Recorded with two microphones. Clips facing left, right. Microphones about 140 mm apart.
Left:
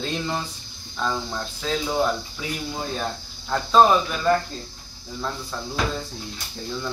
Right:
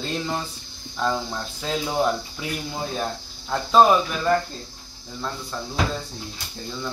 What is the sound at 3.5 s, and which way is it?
Music, 5° right (ahead or behind).